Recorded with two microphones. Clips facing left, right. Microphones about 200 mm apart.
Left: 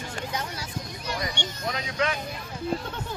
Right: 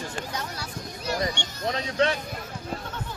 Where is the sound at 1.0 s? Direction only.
40° right (ahead or behind).